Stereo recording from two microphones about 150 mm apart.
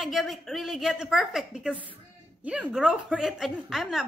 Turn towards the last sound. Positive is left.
turn(degrees=0)  # may be behind; listen again after turning